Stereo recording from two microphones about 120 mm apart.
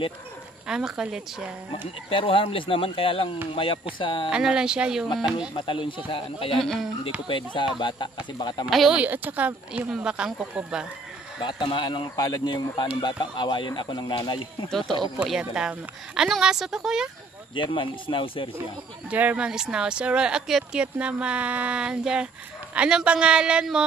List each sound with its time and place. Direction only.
0.7 s a woman's voice: 5° right (ahead or behind)
2.0 s speech: 45° left (ahead or behind)
4.3 s speech: 5° right (ahead or behind)
5.6 s speech: 45° left (ahead or behind)
6.6 s a woman's voice: 5° left (ahead or behind)
7.2 s speech: 45° left (ahead or behind)
8.6 s a woman's voice: centre (ahead or behind)
9.0 s speech: 15° right (ahead or behind)
11.4 s speech: 40° left (ahead or behind)
15.2 s a woman's voice: 5° right (ahead or behind)
17.6 s speech: 45° left (ahead or behind)
19.0 s speech: 10° right (ahead or behind)